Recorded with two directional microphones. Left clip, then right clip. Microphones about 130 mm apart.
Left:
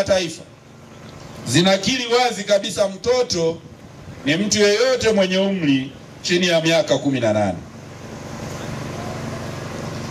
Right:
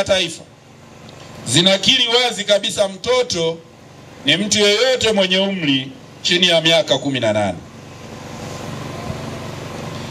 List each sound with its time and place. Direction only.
0.0 s a man's voice: 60° right (ahead or behind)
1.4 s a man's voice: 65° right (ahead or behind)
4.5 s a man's voice: 60° right (ahead or behind)